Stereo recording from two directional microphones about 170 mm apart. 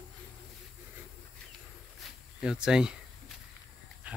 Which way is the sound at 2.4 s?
5° right (ahead or behind).